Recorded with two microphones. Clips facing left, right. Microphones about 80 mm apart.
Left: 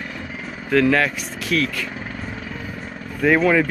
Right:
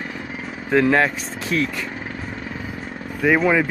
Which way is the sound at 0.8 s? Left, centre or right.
Right.